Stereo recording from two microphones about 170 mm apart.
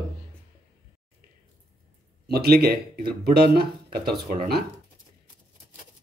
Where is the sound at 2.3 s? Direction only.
65° right (ahead or behind).